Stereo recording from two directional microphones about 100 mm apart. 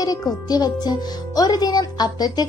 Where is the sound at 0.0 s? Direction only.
40° left (ahead or behind).